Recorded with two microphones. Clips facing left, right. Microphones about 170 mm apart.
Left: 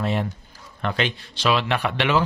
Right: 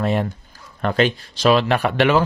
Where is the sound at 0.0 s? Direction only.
50° right (ahead or behind).